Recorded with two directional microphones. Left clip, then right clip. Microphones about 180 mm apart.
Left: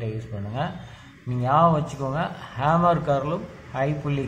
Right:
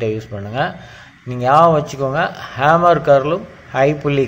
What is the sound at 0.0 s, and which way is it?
A man's voice, 30° right (ahead or behind).